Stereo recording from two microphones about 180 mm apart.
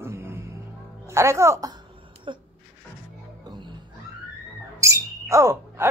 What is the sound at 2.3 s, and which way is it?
Speech, 30° right (ahead or behind).